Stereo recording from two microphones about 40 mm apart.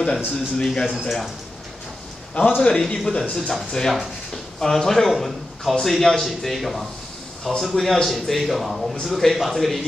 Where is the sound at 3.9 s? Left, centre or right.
Centre.